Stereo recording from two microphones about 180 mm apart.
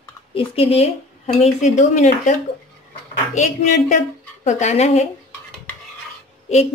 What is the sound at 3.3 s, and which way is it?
A woman's voice, 40° left (ahead or behind).